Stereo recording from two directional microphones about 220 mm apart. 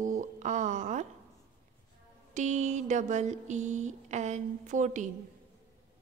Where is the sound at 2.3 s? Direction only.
30° right (ahead or behind).